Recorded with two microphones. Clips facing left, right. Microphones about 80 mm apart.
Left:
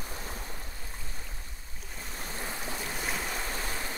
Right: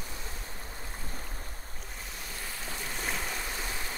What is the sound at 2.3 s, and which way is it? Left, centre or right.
Boat, left.